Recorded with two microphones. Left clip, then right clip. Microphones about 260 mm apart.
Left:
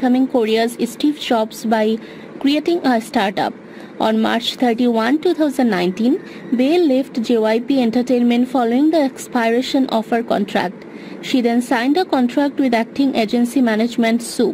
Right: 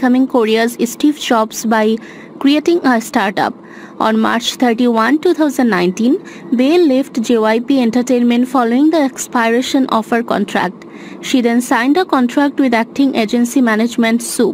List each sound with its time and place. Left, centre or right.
0.0 s speech: centre